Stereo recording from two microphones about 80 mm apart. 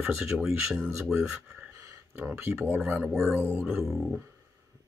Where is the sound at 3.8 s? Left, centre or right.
Centre.